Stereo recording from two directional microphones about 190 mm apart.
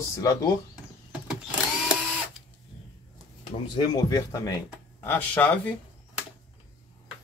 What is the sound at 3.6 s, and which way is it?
Speech, 25° left (ahead or behind).